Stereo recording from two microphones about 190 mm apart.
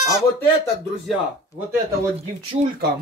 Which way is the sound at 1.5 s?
15° left (ahead or behind).